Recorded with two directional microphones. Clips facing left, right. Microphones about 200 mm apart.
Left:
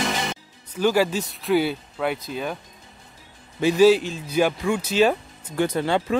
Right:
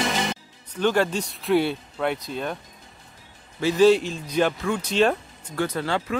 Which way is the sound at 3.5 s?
15° left (ahead or behind).